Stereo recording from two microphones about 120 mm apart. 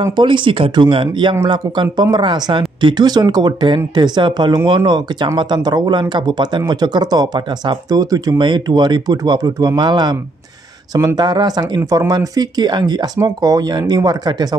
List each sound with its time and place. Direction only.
0.0 s speech: 40° right (ahead or behind)
11.1 s speech: 35° right (ahead or behind)